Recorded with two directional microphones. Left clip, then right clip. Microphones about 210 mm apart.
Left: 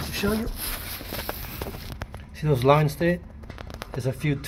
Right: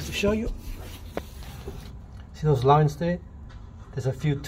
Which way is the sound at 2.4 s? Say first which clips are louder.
Even; 5° left (ahead or behind).